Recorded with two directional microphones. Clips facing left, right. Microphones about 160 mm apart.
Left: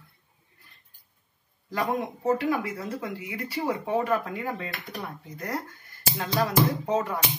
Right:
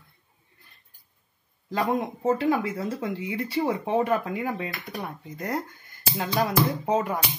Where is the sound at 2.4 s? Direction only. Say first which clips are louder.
Right 3 dB; 25° right (ahead or behind).